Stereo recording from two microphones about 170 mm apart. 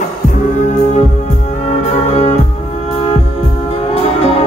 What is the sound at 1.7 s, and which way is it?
Music, 35° left (ahead or behind).